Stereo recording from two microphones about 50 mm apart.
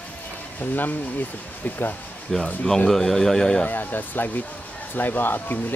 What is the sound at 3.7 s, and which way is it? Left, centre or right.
Speech, left.